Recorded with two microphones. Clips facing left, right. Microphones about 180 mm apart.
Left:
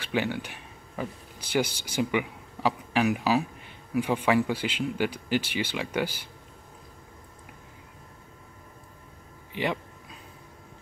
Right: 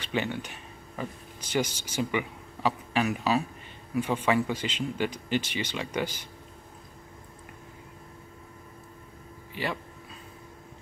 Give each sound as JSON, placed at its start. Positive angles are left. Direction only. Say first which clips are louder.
{"t": 0.0, "sound": "speech", "louder": "left 2 dB", "side_deg": 10}